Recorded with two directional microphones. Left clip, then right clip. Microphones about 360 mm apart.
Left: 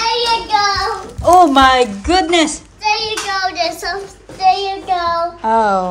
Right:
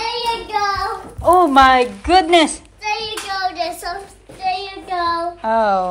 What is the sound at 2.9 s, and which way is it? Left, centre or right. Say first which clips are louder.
Child singing: left 5 dB; left.